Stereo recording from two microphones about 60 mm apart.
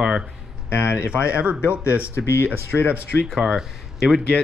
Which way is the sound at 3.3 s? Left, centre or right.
Centre.